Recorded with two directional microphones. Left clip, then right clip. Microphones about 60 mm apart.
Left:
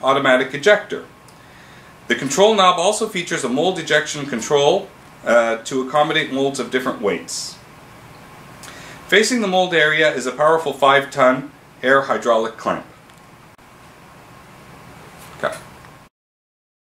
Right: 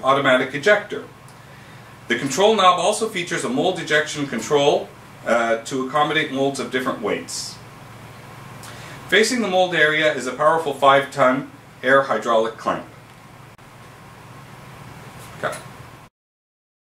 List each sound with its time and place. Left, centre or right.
0.0 s speech: left
2.0 s speech: left
9.1 s speech: centre
15.4 s speech: centre